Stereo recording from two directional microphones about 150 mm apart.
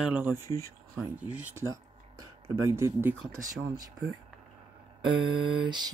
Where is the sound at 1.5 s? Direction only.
20° right (ahead or behind).